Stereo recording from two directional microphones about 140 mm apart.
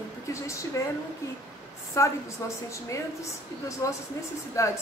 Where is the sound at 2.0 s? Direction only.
25° left (ahead or behind).